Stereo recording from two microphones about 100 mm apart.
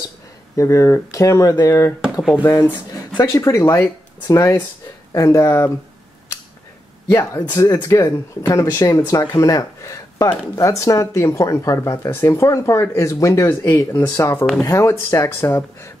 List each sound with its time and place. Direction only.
0.6 s speech: 30° left (ahead or behind)
3.2 s speech: 30° left (ahead or behind)
7.1 s speech: 25° left (ahead or behind)